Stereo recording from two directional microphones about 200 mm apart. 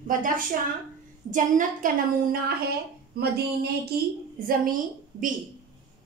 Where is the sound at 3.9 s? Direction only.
50° right (ahead or behind).